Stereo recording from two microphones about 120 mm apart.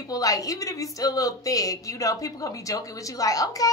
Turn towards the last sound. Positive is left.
turn(degrees=30)  # may be behind; listen again after turning